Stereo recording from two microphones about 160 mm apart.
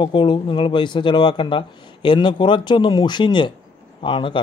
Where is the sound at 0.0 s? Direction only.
30° left (ahead or behind).